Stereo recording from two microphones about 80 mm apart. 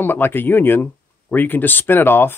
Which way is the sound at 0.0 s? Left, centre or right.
Left.